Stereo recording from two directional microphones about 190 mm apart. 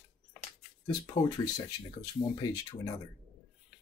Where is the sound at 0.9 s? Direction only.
20° left (ahead or behind).